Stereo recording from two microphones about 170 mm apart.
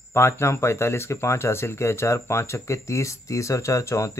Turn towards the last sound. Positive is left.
turn(degrees=15)  # may be behind; listen again after turning